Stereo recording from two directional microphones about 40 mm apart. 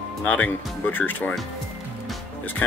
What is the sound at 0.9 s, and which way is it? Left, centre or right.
Speech, left.